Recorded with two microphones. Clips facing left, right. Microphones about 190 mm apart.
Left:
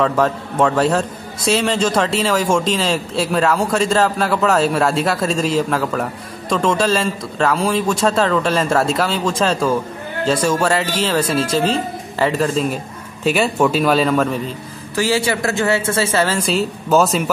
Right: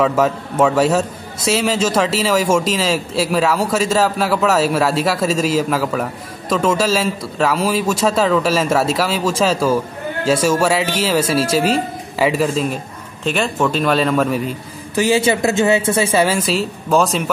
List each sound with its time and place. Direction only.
0.0 s a man's voice: 5° right (ahead or behind)
15.0 s speech: 20° right (ahead or behind); by 17.2 s centre (ahead or behind)